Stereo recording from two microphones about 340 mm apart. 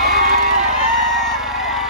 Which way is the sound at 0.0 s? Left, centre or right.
Right.